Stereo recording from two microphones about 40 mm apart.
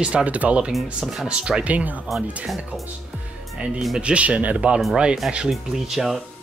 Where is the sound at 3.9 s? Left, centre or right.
Right.